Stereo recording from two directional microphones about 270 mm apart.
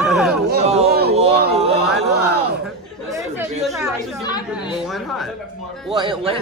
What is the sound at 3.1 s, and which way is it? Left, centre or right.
Speech, centre.